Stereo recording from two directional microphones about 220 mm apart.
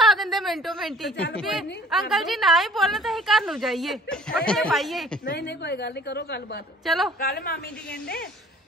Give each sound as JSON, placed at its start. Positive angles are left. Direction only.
{"t": 0.0, "sound": "a woman's voice", "side_deg": 0}
{"t": 5.2, "sound": "a woman's voice", "side_deg": 45}
{"t": 6.8, "sound": "a woman's voice", "side_deg": 0}
{"t": 7.2, "sound": "a woman's voice", "side_deg": 45}